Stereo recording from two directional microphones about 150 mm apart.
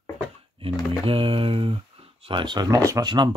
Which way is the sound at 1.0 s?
35° right (ahead or behind).